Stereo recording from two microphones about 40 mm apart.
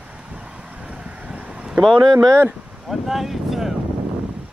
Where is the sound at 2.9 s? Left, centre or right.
Centre.